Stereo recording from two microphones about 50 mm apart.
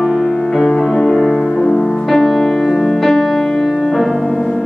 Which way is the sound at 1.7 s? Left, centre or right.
Centre.